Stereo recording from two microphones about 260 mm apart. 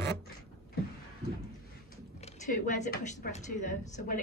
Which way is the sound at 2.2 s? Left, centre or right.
Left.